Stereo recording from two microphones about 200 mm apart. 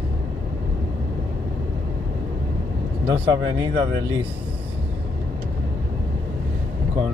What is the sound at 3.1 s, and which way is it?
Speech, 25° right (ahead or behind).